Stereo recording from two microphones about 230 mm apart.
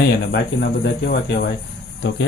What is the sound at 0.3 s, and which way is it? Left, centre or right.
Speech, left.